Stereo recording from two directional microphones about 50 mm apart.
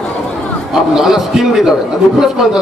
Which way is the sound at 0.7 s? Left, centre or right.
Centre.